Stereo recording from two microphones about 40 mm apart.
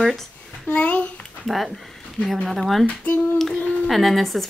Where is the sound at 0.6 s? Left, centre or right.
Left.